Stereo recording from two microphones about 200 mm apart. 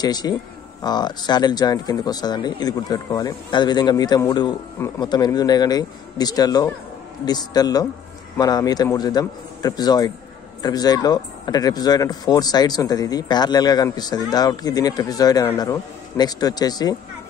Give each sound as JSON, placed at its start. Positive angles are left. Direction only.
{"t": 0.0, "sound": "speech", "side_deg": 20}